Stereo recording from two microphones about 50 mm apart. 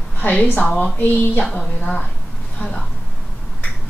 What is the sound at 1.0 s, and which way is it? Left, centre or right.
Humming, left.